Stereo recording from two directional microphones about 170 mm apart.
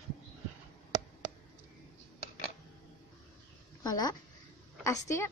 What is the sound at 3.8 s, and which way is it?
A woman's voice, 20° left (ahead or behind).